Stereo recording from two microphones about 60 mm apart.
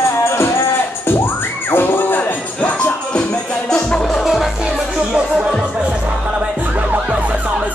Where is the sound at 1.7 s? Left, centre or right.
Left.